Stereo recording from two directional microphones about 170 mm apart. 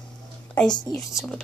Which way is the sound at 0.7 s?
25° left (ahead or behind).